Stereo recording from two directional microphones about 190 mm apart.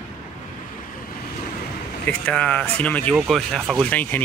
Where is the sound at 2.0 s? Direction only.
5° left (ahead or behind).